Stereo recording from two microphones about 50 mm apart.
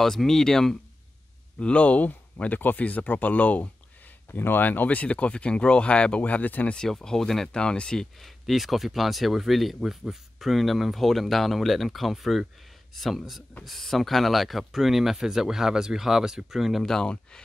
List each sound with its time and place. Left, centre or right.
0.0 s speech: centre
1.6 s speech: left
4.3 s speech: left
6.9 s speech: centre
7.4 s speech: centre
8.0 s speech: centre
16.8 s speech: centre